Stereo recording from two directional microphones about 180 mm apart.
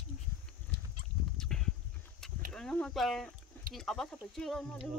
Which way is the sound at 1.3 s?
5° left (ahead or behind).